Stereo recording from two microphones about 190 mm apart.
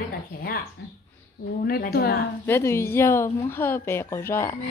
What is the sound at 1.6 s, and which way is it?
Speech, 55° left (ahead or behind).